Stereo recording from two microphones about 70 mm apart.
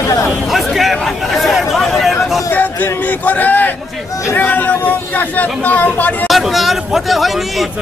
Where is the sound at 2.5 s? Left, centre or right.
Left.